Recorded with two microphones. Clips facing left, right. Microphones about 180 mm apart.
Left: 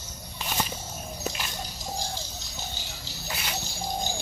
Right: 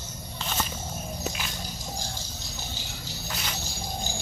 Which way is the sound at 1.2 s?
Centre (ahead or behind).